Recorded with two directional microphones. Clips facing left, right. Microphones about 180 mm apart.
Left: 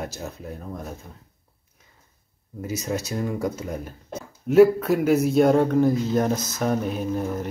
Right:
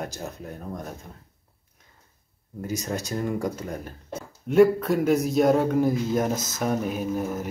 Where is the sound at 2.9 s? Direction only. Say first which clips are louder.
Left 4 dB; 5° left (ahead or behind).